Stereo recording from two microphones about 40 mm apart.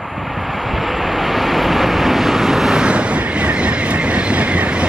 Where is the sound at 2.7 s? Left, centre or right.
Right.